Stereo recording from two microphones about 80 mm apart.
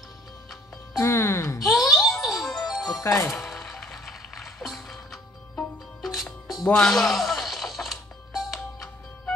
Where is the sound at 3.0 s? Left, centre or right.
Left.